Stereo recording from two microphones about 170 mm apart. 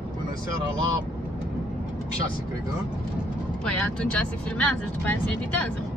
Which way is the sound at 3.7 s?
5° left (ahead or behind).